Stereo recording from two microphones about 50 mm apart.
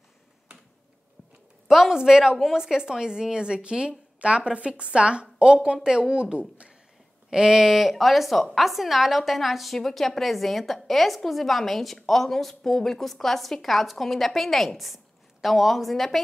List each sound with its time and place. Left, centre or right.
1.7 s a woman's voice: centre
7.2 s a woman's voice: centre